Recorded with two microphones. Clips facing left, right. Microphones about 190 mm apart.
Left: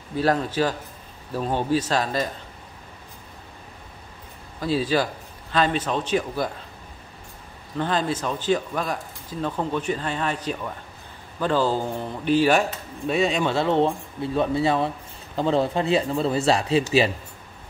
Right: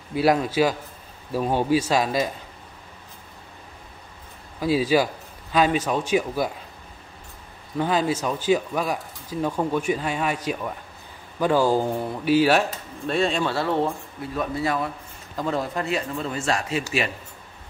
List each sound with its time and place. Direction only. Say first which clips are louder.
0.1 s speech: right 2 dB; 10° right (ahead or behind)
4.6 s a man's voice: right 2 dB; 10° right (ahead or behind)
7.7 s speech: right 2 dB; 10° right (ahead or behind)
13.0 s speech: left 1 dB; 5° left (ahead or behind)
13.4 s speech: left 3 dB; 20° left (ahead or behind)